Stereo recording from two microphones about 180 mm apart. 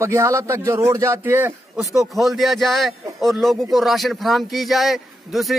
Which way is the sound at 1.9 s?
Centre (ahead or behind).